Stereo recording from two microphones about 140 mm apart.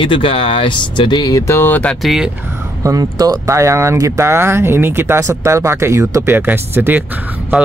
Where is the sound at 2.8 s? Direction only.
25° right (ahead or behind).